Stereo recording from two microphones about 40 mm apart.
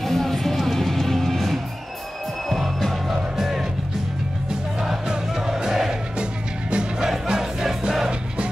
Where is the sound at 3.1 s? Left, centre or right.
Centre.